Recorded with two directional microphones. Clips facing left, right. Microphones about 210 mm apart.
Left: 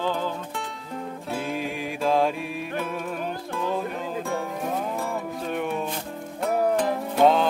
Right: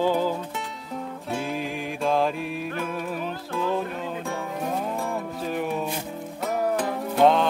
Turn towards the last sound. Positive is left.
turn(degrees=0)  # may be behind; listen again after turning